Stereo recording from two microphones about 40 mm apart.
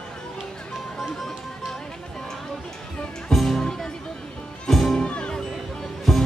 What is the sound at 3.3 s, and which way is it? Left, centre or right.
Music, centre.